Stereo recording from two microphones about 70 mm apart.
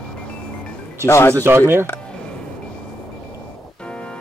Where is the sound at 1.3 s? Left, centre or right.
Right.